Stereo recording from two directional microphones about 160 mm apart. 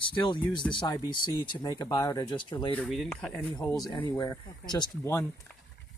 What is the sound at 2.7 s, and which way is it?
Speech, 5° left (ahead or behind).